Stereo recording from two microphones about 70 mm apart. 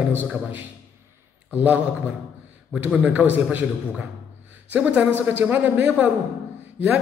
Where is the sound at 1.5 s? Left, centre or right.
Right.